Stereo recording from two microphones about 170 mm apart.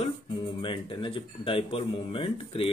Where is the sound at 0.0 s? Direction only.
30° left (ahead or behind).